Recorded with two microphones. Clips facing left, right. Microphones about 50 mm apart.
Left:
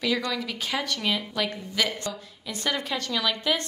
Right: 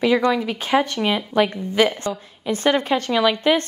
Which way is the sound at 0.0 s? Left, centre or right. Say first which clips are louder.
Right 9 dB; right.